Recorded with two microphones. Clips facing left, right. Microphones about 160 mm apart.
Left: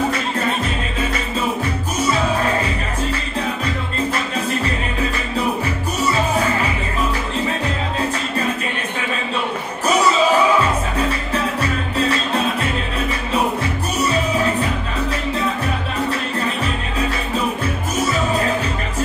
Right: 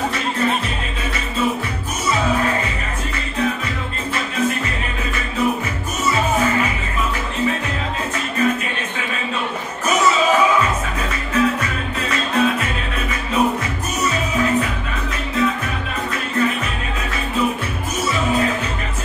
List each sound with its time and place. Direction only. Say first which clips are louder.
11.6 s music: left 5 dB; 35° left (ahead or behind)